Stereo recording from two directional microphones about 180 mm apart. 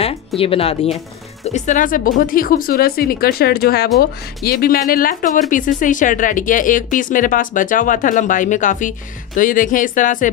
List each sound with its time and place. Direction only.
0.4 s speech: 30° left (ahead or behind)